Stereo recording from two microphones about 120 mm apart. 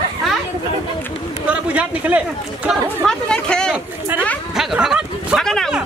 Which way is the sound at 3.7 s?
15° right (ahead or behind).